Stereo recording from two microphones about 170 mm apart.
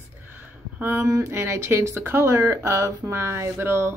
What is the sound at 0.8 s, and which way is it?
Speech, 15° right (ahead or behind).